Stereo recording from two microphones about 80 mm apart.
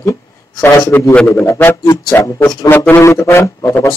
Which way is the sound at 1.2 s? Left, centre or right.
Left.